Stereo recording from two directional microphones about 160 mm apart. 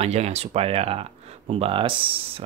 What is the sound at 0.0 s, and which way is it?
Speech, 40° right (ahead or behind).